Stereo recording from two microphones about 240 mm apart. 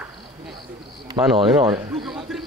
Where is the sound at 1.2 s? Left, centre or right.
Centre.